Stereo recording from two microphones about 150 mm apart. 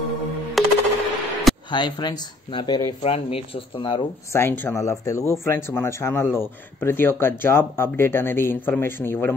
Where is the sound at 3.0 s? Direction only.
40° left (ahead or behind).